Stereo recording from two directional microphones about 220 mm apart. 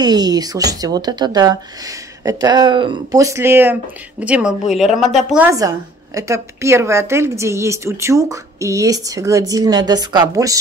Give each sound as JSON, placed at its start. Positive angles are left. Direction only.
{"t": 0.0, "sound": "a woman's voice", "side_deg": -20}
{"t": 5.5, "sound": "a woman's voice", "side_deg": -15}